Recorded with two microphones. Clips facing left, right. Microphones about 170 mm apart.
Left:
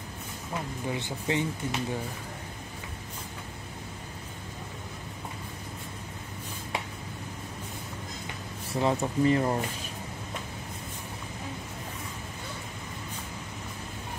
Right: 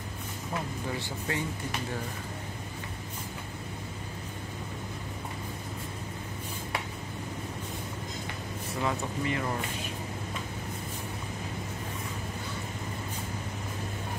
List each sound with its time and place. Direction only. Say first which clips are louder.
0.8 s speech: left 3 dB; 20° left (ahead or behind)
8.8 s speech: left 7 dB; 35° left (ahead or behind)